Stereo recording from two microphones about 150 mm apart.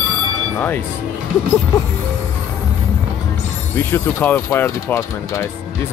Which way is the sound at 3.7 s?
15° left (ahead or behind).